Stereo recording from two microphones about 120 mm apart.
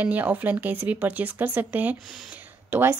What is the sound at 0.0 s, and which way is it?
A woman's voice, 15° right (ahead or behind).